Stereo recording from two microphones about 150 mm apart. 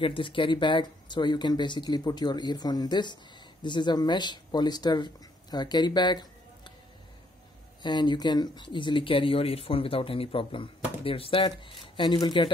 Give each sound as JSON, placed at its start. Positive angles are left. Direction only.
{"t": 0.0, "sound": "speech", "side_deg": 35}
{"t": 7.8, "sound": "speech", "side_deg": 30}